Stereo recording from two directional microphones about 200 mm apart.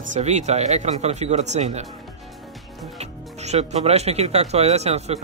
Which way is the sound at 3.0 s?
35° right (ahead or behind).